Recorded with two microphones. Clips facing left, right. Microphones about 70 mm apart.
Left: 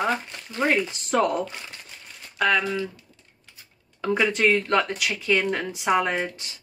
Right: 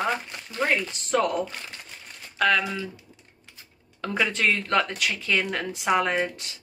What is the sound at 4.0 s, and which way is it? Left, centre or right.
Speech, centre.